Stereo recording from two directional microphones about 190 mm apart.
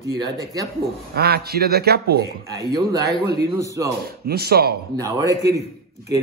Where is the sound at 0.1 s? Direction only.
20° right (ahead or behind).